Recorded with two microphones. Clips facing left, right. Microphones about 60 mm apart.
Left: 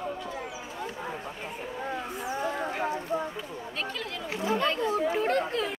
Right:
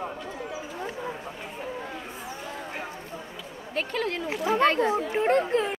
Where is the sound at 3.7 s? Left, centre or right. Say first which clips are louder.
Right 8 dB; right.